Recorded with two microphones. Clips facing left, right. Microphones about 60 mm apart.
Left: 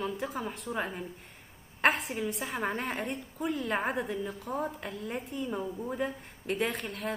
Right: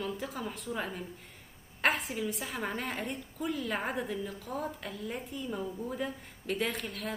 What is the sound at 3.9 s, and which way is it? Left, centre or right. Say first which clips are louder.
A woman's voice: left 2 dB; centre.